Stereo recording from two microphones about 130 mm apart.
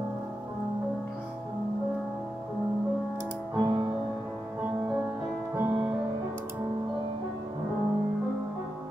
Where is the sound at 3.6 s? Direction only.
15° right (ahead or behind).